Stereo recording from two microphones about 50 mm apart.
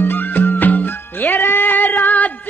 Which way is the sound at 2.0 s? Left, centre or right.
Left.